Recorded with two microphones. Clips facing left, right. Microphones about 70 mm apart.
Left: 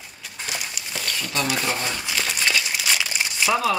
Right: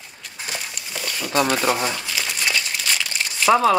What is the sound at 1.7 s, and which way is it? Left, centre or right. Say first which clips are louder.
Speech: right 5 dB; centre.